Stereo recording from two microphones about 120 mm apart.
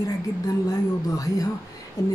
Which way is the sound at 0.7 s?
30° left (ahead or behind).